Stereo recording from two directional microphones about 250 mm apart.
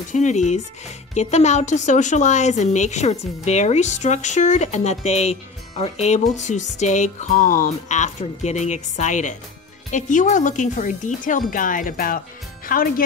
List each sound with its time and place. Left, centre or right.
0.1 s a woman's voice: left